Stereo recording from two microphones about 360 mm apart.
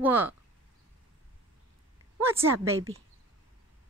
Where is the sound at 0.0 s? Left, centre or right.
Centre.